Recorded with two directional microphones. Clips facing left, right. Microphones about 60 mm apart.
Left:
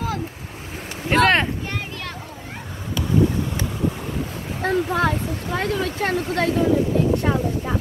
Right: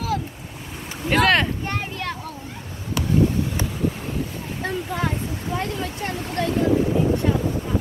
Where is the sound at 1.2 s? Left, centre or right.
Left.